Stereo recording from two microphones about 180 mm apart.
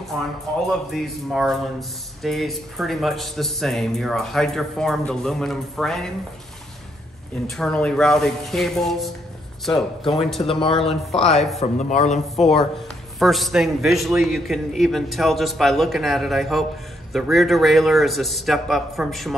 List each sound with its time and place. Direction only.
0.7 s speech: centre (ahead or behind)
7.4 s speech: centre (ahead or behind)
10.4 s speech: 30° left (ahead or behind)
13.2 s speech: centre (ahead or behind)